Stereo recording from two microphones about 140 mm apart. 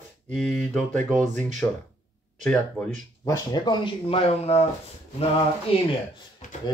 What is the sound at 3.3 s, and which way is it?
Speech, 30° left (ahead or behind).